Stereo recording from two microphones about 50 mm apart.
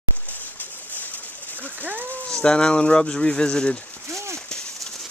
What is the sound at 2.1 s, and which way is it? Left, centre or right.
Speech, left.